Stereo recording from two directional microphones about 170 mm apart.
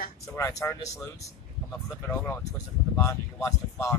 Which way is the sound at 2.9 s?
15° left (ahead or behind).